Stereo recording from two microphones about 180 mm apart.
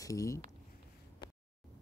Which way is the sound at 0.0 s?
20° left (ahead or behind).